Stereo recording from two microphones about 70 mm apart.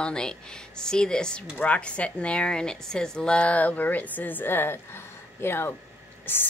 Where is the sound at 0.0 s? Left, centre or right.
Centre; by 6.5 s left.